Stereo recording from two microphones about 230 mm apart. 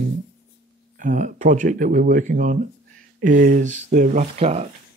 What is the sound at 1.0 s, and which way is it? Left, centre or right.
Speech, right.